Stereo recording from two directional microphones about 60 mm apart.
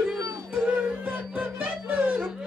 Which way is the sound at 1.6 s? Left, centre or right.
Right.